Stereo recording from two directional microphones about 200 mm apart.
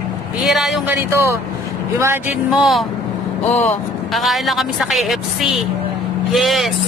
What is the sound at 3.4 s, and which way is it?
Speech, 10° left (ahead or behind).